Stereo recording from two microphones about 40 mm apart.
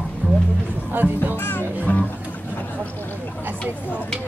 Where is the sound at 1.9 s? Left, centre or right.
Left.